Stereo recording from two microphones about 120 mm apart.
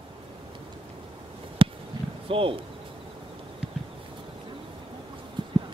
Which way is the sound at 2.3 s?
50° right (ahead or behind).